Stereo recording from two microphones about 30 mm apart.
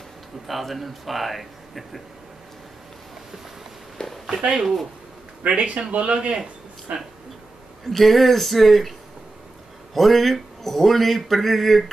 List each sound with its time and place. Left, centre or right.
0.5 s speech: centre
4.3 s speech: right
5.5 s speech: right
7.8 s speech: centre
9.9 s speech: centre